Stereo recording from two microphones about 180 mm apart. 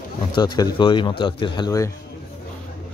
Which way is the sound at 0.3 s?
25° left (ahead or behind).